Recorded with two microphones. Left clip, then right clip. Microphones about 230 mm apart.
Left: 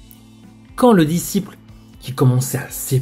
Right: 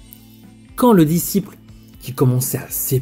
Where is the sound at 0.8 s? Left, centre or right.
Right.